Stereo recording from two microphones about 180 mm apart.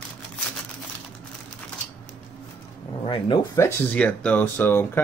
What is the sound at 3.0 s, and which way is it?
Speech, 25° left (ahead or behind).